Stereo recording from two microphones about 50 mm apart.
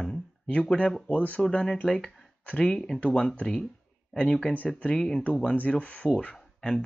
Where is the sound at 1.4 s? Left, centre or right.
Centre.